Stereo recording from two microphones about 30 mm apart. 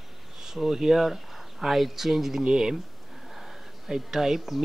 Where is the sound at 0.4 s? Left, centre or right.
Centre.